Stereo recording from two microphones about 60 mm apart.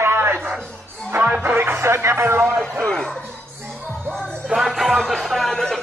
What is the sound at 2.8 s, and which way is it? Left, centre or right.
Speech, centre.